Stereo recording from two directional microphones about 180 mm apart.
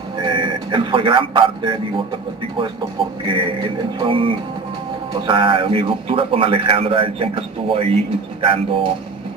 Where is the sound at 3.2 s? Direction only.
30° right (ahead or behind).